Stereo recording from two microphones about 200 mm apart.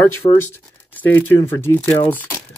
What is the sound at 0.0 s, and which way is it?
Speech, 10° left (ahead or behind).